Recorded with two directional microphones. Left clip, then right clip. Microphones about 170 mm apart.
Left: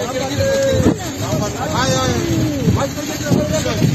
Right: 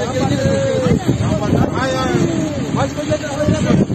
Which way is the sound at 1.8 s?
90° left.